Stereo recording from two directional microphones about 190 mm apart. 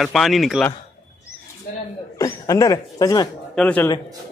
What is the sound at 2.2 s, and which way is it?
Speech, 20° left (ahead or behind).